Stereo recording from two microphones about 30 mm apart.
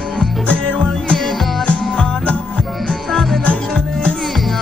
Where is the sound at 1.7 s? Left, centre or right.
Left.